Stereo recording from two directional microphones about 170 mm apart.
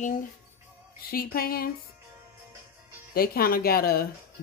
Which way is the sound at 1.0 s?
60° left (ahead or behind).